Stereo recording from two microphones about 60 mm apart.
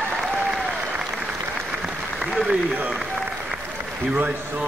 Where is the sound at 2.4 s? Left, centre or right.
Centre.